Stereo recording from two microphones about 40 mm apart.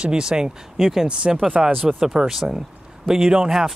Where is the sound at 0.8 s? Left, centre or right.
Centre.